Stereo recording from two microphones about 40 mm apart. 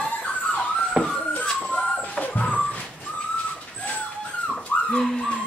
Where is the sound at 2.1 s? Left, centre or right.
Left.